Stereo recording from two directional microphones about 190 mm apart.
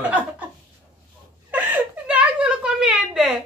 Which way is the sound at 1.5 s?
10° right (ahead or behind).